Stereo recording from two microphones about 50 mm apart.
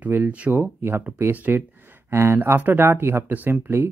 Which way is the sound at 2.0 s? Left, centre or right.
Right.